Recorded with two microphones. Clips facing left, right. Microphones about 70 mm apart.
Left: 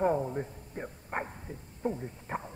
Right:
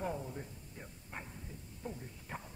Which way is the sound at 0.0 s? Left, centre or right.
Left.